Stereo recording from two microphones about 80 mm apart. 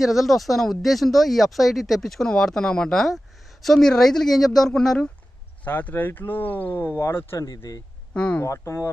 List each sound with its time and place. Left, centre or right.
0.0 s speech: centre
5.6 s speech: left
7.3 s a man's voice: left
8.1 s speech: centre
8.4 s speech: left